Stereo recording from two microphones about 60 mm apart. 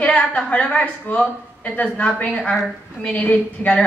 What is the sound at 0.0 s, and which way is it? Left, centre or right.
A woman's voice, left.